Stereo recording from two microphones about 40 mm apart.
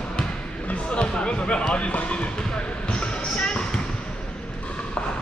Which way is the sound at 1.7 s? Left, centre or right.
Left.